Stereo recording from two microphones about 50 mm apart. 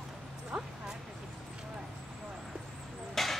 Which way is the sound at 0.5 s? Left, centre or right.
Centre.